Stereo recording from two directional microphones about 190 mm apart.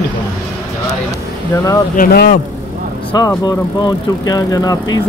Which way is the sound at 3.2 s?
20° left (ahead or behind).